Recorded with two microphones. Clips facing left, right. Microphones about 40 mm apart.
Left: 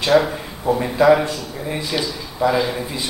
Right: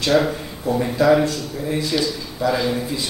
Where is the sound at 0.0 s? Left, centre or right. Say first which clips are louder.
Left 2 dB; centre.